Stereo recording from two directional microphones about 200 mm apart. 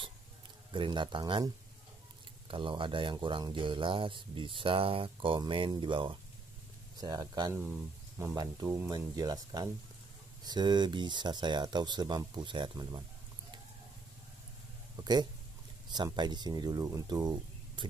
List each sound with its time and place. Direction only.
0.7 s speech: 25° right (ahead or behind)
15.0 s speech: 20° right (ahead or behind)